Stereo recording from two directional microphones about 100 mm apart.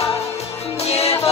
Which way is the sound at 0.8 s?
90° left.